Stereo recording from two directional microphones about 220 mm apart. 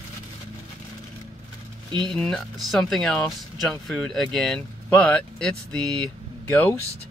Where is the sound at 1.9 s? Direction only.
20° right (ahead or behind).